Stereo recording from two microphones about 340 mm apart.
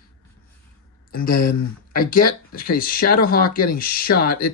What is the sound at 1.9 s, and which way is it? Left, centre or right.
Speech, left.